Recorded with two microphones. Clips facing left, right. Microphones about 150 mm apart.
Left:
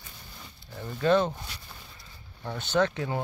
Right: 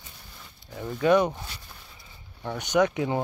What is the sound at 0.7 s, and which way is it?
Speech, 5° right (ahead or behind).